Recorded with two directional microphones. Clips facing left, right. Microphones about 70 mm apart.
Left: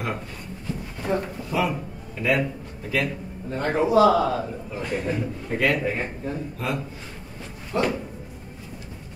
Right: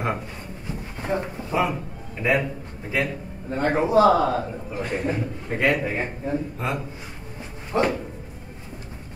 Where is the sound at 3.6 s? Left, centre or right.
Right.